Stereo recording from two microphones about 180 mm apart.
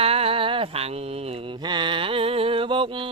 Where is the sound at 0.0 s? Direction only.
35° right (ahead or behind).